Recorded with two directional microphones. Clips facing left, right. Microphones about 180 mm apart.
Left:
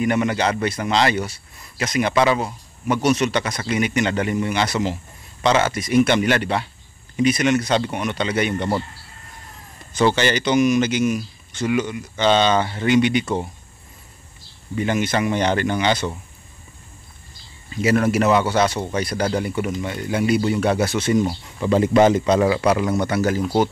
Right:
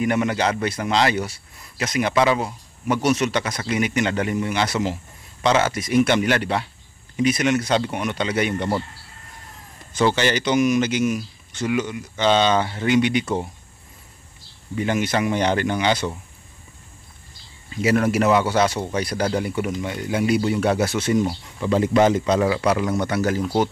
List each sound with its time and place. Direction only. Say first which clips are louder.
0.0 s a man's voice: left 1 dB; 5° right (ahead or behind)
9.9 s a man's voice: left 1 dB; 5° right (ahead or behind)
14.8 s speech: left 1 dB; 5° right (ahead or behind)
17.8 s a man's voice: left 1 dB; 5° right (ahead or behind)
21.5 s a man's voice: left 2 dB; 20° left (ahead or behind)
22.8 s a man's voice: left 2 dB; 5° left (ahead or behind)